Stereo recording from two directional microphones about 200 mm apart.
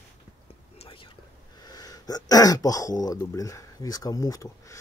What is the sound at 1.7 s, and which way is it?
Speech, 20° left (ahead or behind).